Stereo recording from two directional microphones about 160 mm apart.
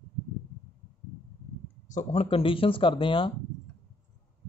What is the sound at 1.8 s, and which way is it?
Speech, 45° left (ahead or behind).